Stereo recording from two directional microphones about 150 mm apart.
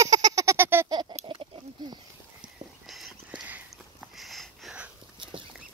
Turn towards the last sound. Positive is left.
turn(degrees=-5)  # may be behind; listen again after turning